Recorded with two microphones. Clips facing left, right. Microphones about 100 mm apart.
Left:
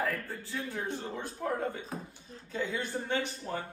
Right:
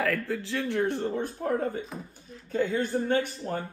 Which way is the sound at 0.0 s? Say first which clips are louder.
Right 6 dB; 90° right.